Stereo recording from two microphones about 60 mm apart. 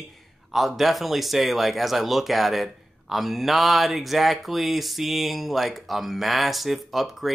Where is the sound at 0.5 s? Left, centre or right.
Centre.